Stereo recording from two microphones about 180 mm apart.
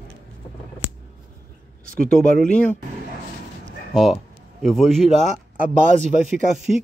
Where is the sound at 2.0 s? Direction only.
5° left (ahead or behind).